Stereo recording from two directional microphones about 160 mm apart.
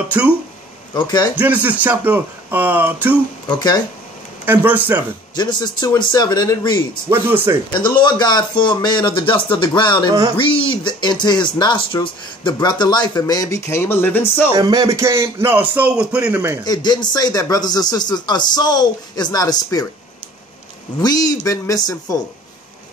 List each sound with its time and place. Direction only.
0.9 s speech: 25° left (ahead or behind)
1.4 s speech: 10° right (ahead or behind)
3.4 s speech: 25° left (ahead or behind)
4.5 s speech: 10° right (ahead or behind)
5.3 s speech: 30° left (ahead or behind)
7.1 s speech: 15° right (ahead or behind)
7.7 s speech: 25° left (ahead or behind)
14.5 s speech: 25° right (ahead or behind); by 16.5 s 10° right (ahead or behind)
16.6 s speech: 25° left (ahead or behind)
21.0 s speech: 25° left (ahead or behind)